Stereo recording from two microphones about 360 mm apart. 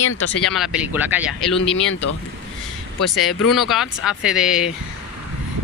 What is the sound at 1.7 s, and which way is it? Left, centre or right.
Speech, left.